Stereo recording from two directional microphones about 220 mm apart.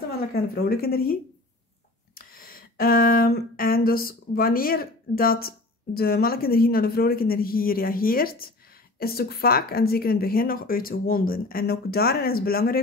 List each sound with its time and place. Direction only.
0.3 s speech: 45° left (ahead or behind)
2.1 s a sound: 40° left (ahead or behind)
5.9 s speech: 45° left (ahead or behind)